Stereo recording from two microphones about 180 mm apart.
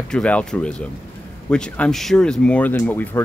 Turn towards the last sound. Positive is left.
turn(degrees=10)  # may be behind; listen again after turning